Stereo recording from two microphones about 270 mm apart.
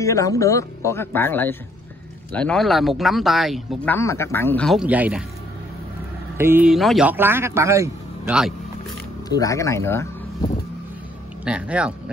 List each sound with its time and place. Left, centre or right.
0.0 s speech: centre
6.3 s speech: centre
9.3 s speech: centre
11.4 s speech: centre